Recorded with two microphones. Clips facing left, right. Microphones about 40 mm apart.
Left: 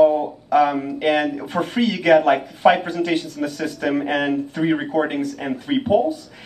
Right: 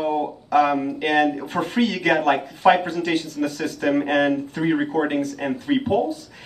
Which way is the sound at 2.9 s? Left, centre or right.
Left.